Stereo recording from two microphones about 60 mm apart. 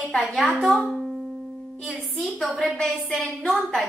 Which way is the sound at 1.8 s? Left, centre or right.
Right.